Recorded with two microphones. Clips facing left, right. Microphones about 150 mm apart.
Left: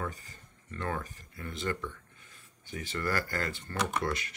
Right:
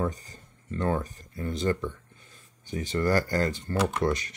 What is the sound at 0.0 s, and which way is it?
Speech, 35° right (ahead or behind).